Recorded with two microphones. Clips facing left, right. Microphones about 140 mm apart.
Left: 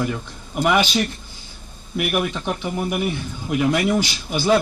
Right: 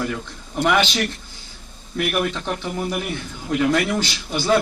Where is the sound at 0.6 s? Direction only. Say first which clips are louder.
Even; 10° left (ahead or behind).